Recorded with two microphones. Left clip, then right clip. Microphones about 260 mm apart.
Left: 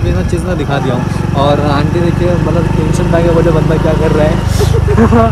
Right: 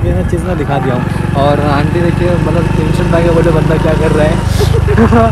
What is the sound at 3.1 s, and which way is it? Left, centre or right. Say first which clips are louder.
Speech: even; centre.